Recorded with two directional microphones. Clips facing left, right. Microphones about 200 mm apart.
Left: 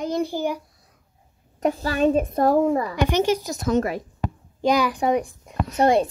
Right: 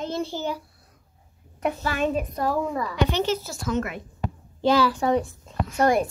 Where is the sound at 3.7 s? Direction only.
35° left (ahead or behind).